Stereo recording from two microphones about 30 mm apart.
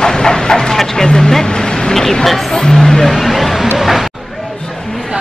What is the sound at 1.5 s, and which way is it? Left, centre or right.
Vehicle, left.